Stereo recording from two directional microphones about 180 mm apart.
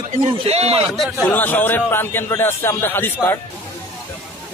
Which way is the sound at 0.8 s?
Centre (ahead or behind).